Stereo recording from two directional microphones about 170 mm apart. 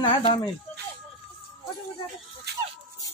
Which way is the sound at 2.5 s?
70° right (ahead or behind).